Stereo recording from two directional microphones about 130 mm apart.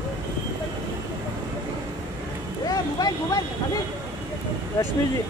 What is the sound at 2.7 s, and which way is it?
Vehicle, 30° left (ahead or behind).